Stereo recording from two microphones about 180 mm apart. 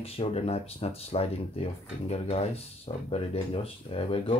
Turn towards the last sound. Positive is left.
turn(degrees=30)  # may be behind; listen again after turning